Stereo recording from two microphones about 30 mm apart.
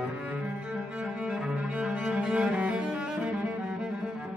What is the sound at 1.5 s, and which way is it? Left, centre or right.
Cello, right.